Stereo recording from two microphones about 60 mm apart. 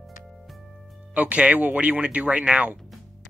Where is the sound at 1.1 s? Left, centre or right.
Right.